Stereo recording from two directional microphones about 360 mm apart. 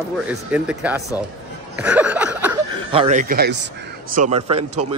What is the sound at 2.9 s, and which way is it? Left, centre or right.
A man's voice, centre.